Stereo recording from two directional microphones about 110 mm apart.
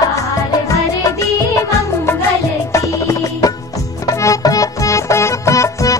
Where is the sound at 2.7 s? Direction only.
30° left (ahead or behind).